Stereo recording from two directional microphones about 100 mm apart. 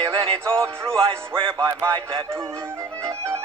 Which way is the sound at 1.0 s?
60° right (ahead or behind).